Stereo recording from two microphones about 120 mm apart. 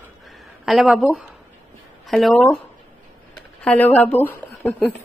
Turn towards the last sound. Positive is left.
turn(degrees=15)  # may be behind; listen again after turning